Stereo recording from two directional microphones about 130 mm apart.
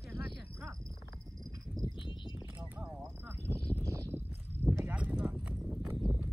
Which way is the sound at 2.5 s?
10° right (ahead or behind).